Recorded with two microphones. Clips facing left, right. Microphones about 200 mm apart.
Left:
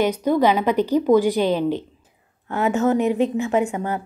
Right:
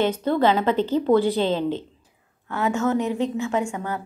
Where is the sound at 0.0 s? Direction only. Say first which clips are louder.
Left 2 dB; 10° left (ahead or behind).